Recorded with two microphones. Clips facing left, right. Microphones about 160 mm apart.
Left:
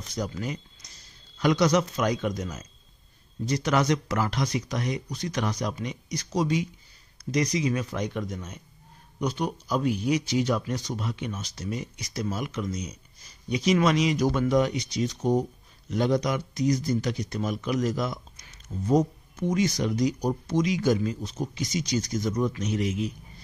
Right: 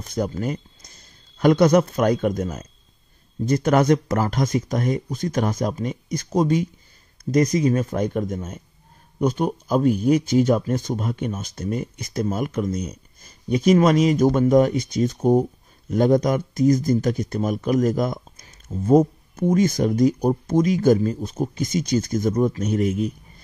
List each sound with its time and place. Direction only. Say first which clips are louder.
0.0 s speech: right 7 dB; 50° right (ahead or behind)